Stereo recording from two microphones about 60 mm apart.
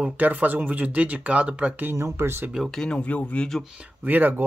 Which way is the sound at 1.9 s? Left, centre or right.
Right.